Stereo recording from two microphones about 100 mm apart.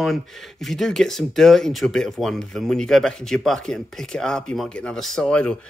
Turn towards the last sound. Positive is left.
turn(degrees=10)  # may be behind; listen again after turning